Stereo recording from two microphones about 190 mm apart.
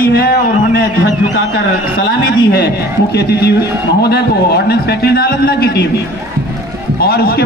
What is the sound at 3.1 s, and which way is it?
A man's voice, 60° left (ahead or behind).